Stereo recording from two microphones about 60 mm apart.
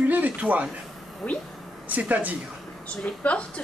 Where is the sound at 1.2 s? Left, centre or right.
Left.